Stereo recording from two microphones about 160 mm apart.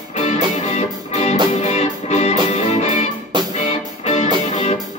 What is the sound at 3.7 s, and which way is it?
Music, 40° left (ahead or behind).